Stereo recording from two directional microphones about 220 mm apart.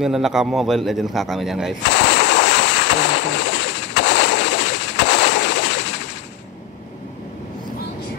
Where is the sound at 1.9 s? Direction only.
55° left (ahead or behind).